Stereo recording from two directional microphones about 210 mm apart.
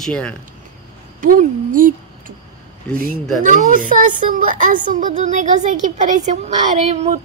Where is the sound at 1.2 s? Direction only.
40° right (ahead or behind).